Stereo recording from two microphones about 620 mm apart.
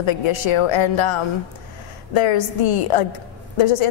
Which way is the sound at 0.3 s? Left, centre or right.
Left.